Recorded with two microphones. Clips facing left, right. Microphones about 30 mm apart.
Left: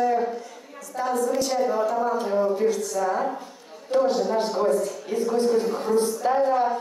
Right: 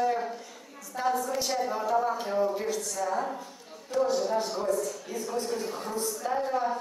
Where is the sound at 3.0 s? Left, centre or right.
Left.